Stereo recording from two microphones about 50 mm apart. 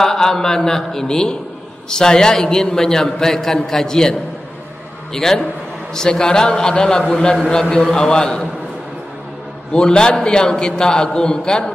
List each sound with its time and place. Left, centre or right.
0.0 s a man's voice: centre
9.7 s a man's voice: centre